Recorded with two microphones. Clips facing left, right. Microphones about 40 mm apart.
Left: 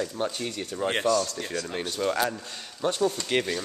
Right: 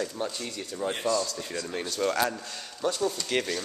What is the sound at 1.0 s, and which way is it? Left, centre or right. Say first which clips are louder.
Speech: left 3 dB; left.